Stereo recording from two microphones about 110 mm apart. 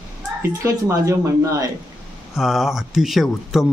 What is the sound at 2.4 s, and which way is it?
Speech, 5° right (ahead or behind).